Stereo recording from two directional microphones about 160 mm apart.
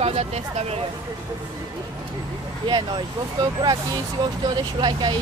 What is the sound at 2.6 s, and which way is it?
Speech, 25° right (ahead or behind).